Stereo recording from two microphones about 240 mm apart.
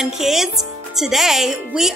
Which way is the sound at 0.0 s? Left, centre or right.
Centre.